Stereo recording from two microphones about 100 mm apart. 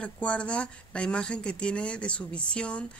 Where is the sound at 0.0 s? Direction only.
10° left (ahead or behind).